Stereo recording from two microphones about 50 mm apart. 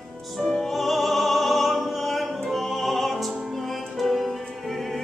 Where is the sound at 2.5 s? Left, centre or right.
Centre.